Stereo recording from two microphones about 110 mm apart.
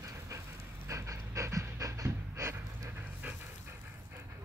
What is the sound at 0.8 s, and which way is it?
Pant, 30° right (ahead or behind).